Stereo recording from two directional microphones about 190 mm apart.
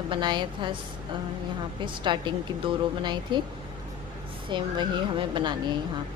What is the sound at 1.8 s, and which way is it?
A woman's voice, 25° right (ahead or behind).